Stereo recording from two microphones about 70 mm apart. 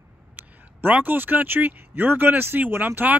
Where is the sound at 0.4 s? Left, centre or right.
Right.